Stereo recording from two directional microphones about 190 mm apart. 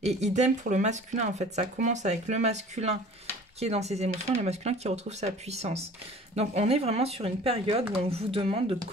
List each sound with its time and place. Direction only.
0.2 s speech: 35° right (ahead or behind)